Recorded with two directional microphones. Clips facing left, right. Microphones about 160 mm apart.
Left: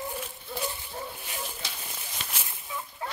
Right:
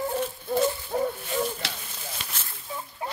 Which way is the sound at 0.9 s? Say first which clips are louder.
Right 12 dB; 90° right.